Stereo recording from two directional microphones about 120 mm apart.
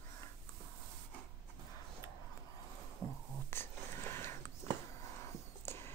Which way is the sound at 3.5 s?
20° left (ahead or behind).